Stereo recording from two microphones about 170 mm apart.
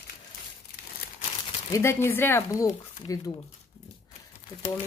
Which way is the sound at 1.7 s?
15° left (ahead or behind).